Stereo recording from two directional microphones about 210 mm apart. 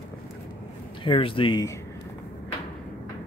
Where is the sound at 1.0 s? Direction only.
25° left (ahead or behind).